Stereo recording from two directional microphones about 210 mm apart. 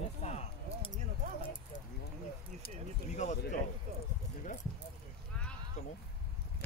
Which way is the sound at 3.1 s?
35° left (ahead or behind).